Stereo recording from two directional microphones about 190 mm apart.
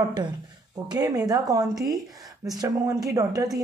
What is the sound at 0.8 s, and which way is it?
Speech, 20° right (ahead or behind).